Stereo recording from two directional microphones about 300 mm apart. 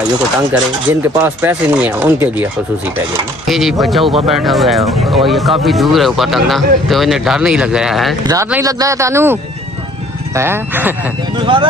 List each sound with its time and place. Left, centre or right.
1.2 s speech: centre
3.4 s speech: centre